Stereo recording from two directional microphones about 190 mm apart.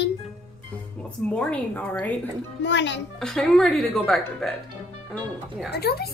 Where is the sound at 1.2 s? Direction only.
5° left (ahead or behind).